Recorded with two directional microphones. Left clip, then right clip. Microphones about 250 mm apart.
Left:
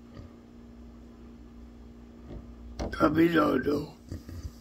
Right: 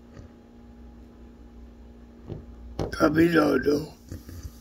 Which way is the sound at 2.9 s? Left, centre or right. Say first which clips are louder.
Right 3 dB; centre.